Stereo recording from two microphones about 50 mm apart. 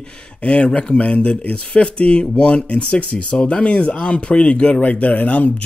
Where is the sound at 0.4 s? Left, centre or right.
Left.